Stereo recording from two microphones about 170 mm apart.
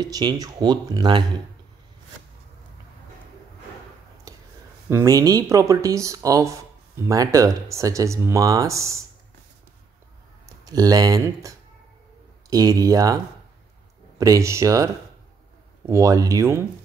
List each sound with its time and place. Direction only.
0.0 s speech: 25° right (ahead or behind)
4.8 s speech: 15° right (ahead or behind)
10.6 s speech: 20° right (ahead or behind)